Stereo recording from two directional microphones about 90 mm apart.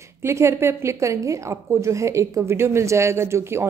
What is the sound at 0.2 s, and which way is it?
A woman's voice, 30° right (ahead or behind).